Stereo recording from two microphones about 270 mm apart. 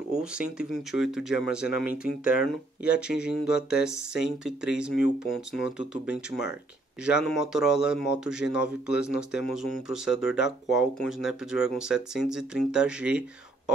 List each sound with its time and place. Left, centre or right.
0.1 s speech: centre